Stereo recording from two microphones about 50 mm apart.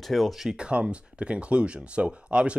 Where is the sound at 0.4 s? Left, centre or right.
Centre.